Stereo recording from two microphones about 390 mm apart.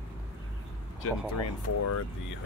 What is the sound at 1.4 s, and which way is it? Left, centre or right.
Speech, left.